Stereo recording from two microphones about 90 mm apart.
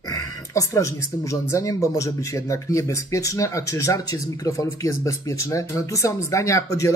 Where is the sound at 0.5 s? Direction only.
35° left (ahead or behind).